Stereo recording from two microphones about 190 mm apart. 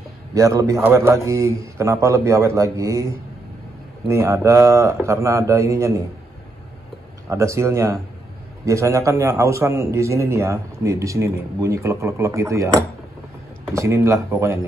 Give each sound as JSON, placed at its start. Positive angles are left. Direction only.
{"t": 0.3, "sound": "a man's voice", "side_deg": -15}
{"t": 7.2, "sound": "a man's voice", "side_deg": -15}